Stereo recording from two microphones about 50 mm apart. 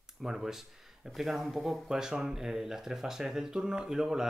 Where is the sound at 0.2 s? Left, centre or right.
Centre.